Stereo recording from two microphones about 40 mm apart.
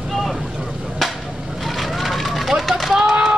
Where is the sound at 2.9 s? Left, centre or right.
Centre.